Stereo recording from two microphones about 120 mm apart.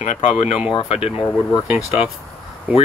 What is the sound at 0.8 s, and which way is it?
Speech, 55° left (ahead or behind).